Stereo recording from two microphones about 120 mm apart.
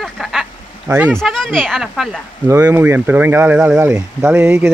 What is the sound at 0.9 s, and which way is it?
Speech, 15° right (ahead or behind).